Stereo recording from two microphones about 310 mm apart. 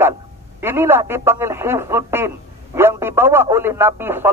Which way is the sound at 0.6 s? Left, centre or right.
Centre.